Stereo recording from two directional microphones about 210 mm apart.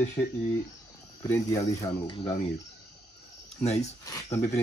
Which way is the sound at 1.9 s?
25° left (ahead or behind).